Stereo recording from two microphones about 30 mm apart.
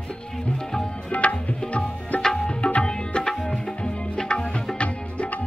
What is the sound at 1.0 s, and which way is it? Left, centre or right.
Tabla, left.